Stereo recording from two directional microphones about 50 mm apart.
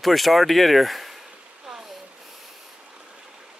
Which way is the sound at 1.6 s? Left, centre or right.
Centre.